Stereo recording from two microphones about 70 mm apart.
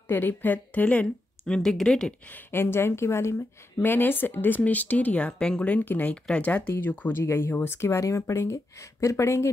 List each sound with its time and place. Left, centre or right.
0.1 s a woman's voice: left
1.5 s speech: centre
2.3 s speech: left
3.8 s speech: left